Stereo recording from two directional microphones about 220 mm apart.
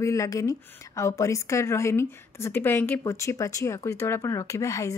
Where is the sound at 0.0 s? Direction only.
15° left (ahead or behind).